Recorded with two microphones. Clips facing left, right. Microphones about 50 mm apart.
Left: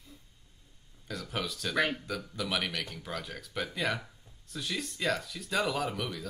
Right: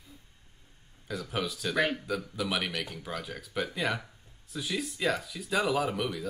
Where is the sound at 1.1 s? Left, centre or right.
Centre.